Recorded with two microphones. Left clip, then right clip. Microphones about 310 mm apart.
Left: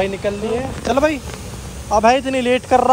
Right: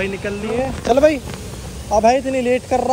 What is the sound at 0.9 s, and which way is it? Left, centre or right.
Speech, centre.